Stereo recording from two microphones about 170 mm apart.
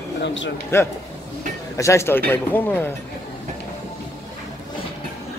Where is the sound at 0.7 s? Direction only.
15° left (ahead or behind).